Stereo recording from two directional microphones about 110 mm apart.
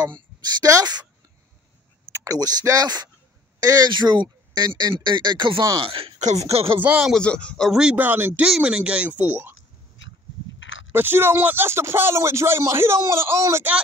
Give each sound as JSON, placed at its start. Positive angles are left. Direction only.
{"t": 0.0, "sound": "a woman's voice", "side_deg": -40}
{"t": 2.1, "sound": "speech", "side_deg": -35}
{"t": 6.1, "sound": "speech", "side_deg": -85}
{"t": 6.8, "sound": "speech", "side_deg": -10}
{"t": 7.2, "sound": "a man's voice", "side_deg": 10}
{"t": 7.8, "sound": "speech", "side_deg": -15}
{"t": 8.5, "sound": "speech", "side_deg": -5}
{"t": 10.9, "sound": "speech", "side_deg": -20}